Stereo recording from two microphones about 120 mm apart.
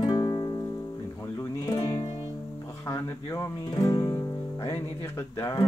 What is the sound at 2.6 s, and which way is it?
Speech, 25° left (ahead or behind).